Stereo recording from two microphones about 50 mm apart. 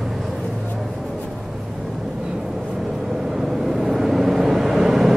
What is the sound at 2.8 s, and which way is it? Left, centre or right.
Vehicle, centre.